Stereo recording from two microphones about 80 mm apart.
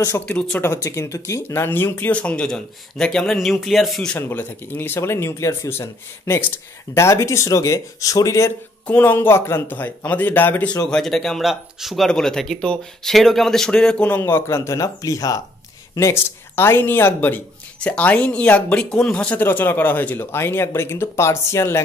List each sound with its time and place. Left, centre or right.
0.2 s a man's voice: centre
0.6 s speech: left
1.5 s a man's voice: left; by 4.1 s centre
4.2 s speech: left
8.8 s speech: left
10.9 s a man's voice: centre
12.1 s a man's voice: centre
14.0 s speech: left
16.5 s speech: left
17.7 s a man's voice: centre
19.4 s speech: left